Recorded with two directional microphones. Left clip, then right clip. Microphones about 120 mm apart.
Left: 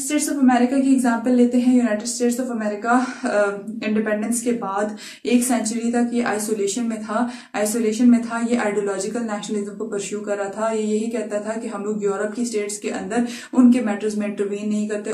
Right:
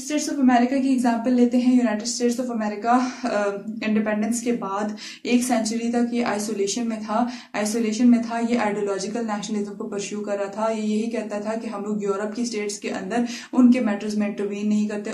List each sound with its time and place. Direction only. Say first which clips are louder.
0.1 s a woman's voice: left 1 dB; 20° right (ahead or behind)
5.4 s a woman's voice: left 1 dB; 25° right (ahead or behind)
10.6 s a woman's voice: left 3 dB; 30° right (ahead or behind)
13.1 s a woman's voice: left 2 dB; 25° right (ahead or behind)